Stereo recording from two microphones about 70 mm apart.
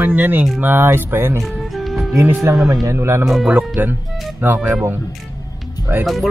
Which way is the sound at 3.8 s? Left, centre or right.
Right.